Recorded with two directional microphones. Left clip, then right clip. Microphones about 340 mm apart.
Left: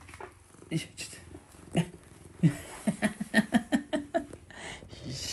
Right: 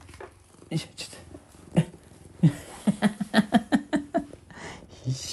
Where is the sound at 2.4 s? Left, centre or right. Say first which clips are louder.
Right 4 dB; right.